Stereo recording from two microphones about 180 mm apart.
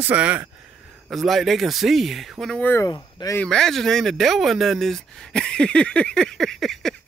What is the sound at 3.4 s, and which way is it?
Speech, 5° left (ahead or behind).